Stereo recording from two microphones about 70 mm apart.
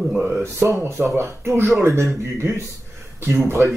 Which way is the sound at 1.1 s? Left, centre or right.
Right.